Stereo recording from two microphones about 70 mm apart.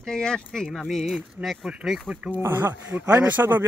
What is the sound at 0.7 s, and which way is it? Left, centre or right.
Speech, centre.